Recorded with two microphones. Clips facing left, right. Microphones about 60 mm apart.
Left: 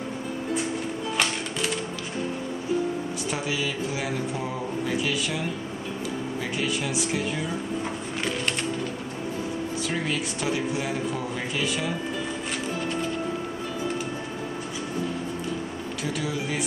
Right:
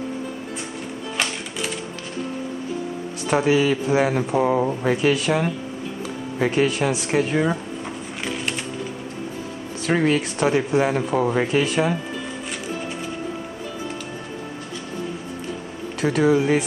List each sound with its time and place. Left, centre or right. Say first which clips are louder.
1.1 s music: right 1 dB; centre
3.3 s speech: right 13 dB; right
9.8 s speech: right 12 dB; right
16.0 s speech: right 13 dB; right